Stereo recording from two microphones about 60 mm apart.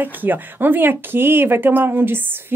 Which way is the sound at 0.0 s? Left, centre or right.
Right.